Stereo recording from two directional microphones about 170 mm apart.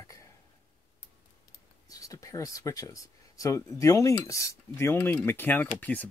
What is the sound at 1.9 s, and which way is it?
Speech, 20° left (ahead or behind).